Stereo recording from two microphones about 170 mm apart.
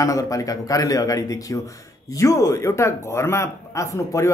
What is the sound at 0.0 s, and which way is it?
Speech, 20° left (ahead or behind).